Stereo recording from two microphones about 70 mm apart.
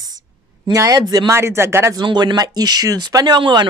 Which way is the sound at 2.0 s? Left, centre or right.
Right.